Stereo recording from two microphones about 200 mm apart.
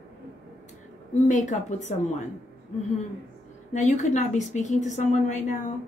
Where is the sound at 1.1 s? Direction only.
35° left (ahead or behind).